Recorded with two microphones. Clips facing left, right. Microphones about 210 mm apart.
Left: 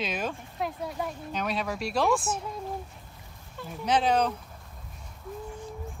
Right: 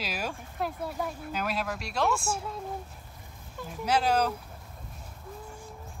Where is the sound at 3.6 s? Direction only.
Centre (ahead or behind).